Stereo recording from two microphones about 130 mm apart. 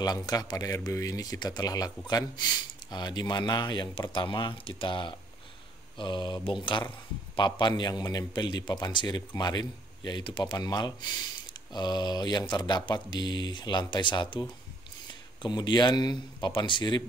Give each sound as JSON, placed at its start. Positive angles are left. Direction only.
{"t": 0.0, "sound": "speech", "side_deg": 30}